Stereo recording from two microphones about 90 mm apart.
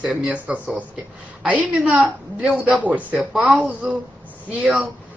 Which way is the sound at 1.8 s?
15° right (ahead or behind).